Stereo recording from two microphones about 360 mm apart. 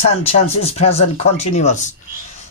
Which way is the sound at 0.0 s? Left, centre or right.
Centre.